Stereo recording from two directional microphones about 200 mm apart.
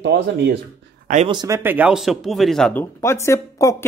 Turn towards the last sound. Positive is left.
turn(degrees=15)  # may be behind; listen again after turning